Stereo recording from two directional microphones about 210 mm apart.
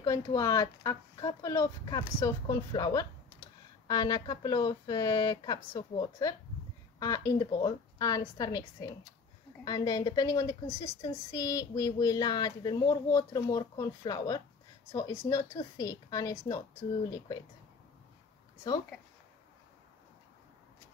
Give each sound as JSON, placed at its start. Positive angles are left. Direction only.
{"t": 0.0, "sound": "speech", "side_deg": 15}